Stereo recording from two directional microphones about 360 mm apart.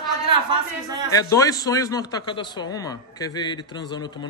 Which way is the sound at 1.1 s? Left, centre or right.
Centre.